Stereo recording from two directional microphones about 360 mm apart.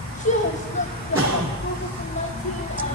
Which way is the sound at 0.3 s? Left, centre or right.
Centre.